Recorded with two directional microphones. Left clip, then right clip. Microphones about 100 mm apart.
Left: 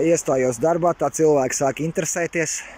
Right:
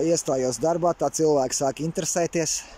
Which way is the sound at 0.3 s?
15° right (ahead or behind).